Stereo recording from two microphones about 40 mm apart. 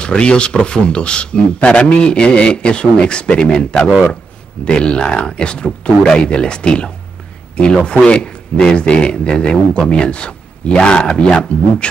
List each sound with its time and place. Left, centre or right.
0.0 s speech: left